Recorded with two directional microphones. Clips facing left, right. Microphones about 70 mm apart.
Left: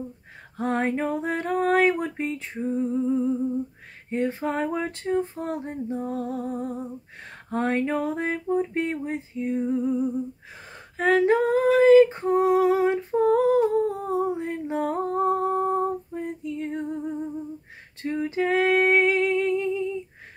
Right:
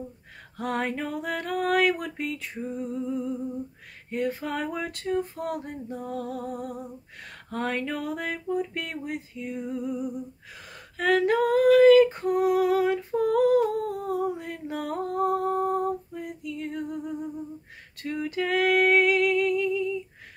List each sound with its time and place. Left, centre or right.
0.6 s female singing: left